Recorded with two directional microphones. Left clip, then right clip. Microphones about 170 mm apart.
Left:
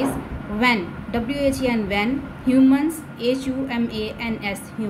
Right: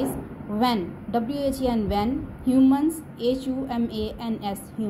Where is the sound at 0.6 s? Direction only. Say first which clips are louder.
Left 4 dB; 20° right (ahead or behind).